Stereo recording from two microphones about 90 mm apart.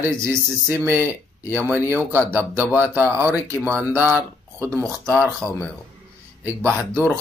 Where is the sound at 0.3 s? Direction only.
25° right (ahead or behind).